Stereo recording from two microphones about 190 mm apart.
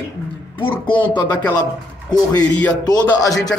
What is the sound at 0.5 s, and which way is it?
Speech, 25° left (ahead or behind).